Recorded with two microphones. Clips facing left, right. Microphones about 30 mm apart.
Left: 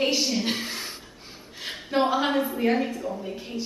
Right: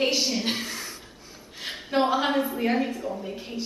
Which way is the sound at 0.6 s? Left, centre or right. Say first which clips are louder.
Left 1 dB; left.